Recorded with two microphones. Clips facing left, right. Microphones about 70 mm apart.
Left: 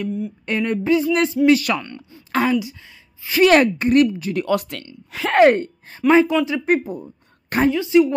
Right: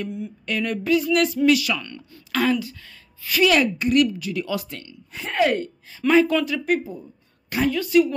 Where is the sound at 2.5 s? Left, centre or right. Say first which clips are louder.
Even; centre.